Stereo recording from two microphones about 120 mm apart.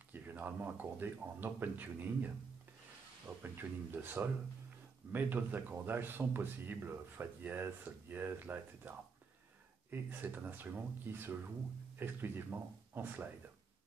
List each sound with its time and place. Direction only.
0.1 s speech: 15° right (ahead or behind)